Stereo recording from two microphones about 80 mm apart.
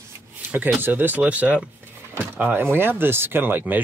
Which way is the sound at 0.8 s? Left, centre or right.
Right.